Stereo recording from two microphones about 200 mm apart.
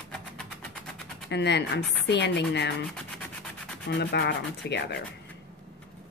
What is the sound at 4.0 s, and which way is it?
A woman's voice, 60° left (ahead or behind).